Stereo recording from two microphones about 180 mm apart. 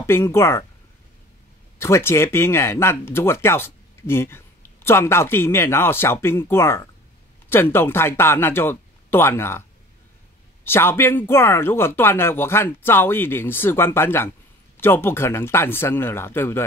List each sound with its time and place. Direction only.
0.0 s speech: 15° left (ahead or behind)
1.8 s speech: 15° left (ahead or behind)
10.6 s speech: 15° left (ahead or behind)